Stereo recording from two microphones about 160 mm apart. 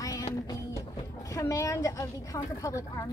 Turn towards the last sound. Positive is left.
turn(degrees=20)  # may be behind; listen again after turning